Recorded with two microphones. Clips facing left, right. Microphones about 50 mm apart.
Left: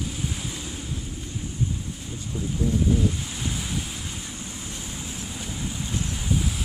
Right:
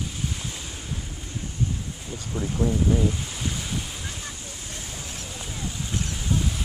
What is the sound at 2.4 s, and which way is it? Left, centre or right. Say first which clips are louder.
Speech: right 2 dB; right.